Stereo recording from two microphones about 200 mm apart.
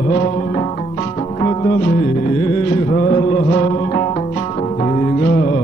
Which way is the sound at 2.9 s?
35° left (ahead or behind).